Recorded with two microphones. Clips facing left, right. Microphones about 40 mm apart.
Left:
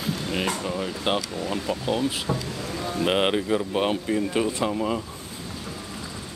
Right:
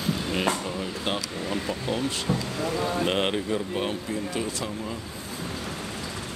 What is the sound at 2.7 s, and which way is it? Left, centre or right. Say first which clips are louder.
Speech: right 3 dB; right.